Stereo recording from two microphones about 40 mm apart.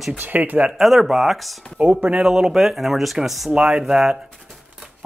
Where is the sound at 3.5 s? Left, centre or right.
Right.